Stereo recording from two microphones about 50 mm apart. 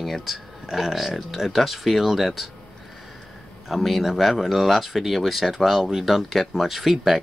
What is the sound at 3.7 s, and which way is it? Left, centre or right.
Speech, centre.